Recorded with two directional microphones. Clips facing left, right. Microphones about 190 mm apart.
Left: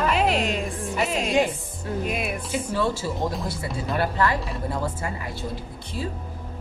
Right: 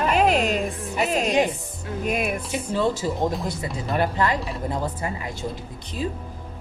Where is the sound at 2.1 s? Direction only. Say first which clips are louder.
Right 7 dB; 45° right (ahead or behind).